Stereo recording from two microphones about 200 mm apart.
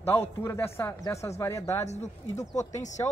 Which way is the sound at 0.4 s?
10° left (ahead or behind).